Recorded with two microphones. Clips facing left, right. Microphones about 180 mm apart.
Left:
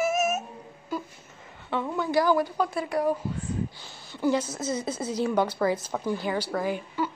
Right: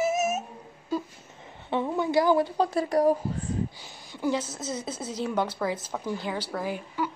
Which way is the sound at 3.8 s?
10° right (ahead or behind).